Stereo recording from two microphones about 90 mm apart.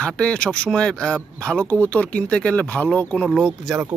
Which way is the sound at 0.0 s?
10° left (ahead or behind).